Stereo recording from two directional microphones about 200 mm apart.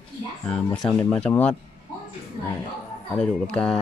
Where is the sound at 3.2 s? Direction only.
5° left (ahead or behind).